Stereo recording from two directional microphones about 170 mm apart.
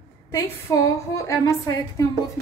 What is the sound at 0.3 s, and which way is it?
A woman's voice, 20° left (ahead or behind).